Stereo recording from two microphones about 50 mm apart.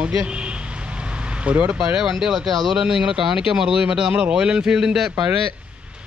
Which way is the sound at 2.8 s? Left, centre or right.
Centre.